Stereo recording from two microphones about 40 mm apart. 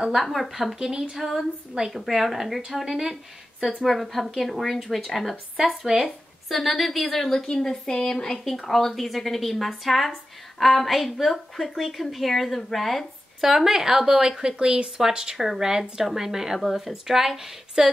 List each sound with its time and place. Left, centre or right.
0.2 s a woman's voice: centre
0.7 s a woman's voice: centre
1.1 s a woman's voice: centre
6.0 s a woman's voice: centre
13.4 s a woman's voice: centre